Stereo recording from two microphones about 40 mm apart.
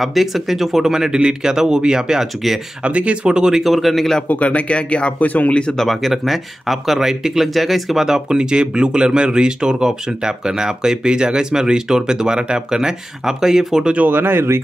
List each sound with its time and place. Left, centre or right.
0.0 s speech: centre
2.8 s speech: right
3.6 s speech: centre
4.3 s speech: left
5.5 s speech: left
5.8 s speech: centre
8.4 s speech: right
14.0 s speech: right